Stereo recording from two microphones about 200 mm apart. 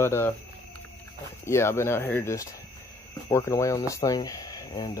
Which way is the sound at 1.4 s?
15° left (ahead or behind).